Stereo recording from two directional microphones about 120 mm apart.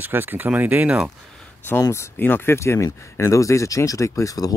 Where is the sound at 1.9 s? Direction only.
20° left (ahead or behind).